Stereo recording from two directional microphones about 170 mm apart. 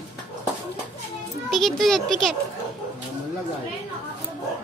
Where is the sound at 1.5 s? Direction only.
Centre (ahead or behind).